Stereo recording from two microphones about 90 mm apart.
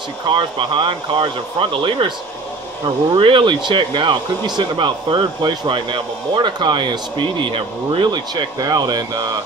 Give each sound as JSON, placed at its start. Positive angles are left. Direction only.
{"t": 0.3, "sound": "speech", "side_deg": -70}
{"t": 5.5, "sound": "speech", "side_deg": -60}
{"t": 8.1, "sound": "speech", "side_deg": -50}